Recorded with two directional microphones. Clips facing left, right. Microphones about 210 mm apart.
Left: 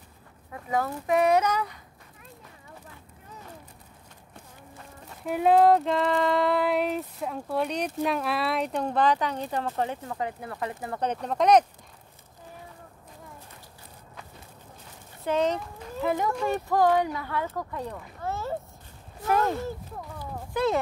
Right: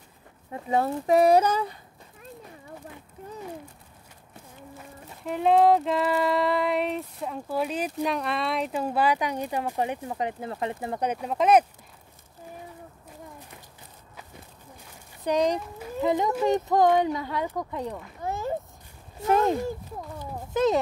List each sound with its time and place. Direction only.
0.5 s speech: 30° right (ahead or behind)
5.2 s female singing: centre (ahead or behind); by 11.1 s 20° right (ahead or behind)
11.1 s speech: 5° right (ahead or behind)
15.2 s speech: 15° right (ahead or behind)